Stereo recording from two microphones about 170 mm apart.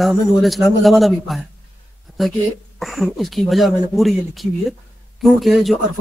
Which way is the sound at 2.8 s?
Centre (ahead or behind).